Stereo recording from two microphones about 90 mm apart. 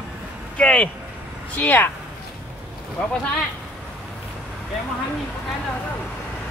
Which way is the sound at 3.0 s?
10° left (ahead or behind).